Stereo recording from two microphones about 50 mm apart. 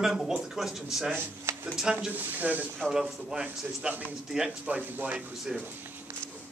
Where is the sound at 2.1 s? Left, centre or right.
Right.